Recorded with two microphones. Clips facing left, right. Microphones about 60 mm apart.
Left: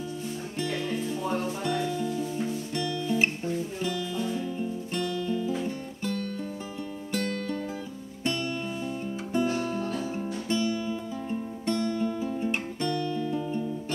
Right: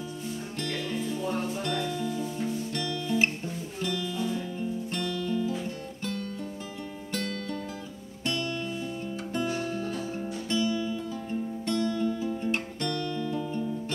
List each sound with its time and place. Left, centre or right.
1.6 s music: centre
2.7 s guitar: centre
3.8 s music: centre
7.1 s music: centre
10.5 s music: left
12.4 s guitar: centre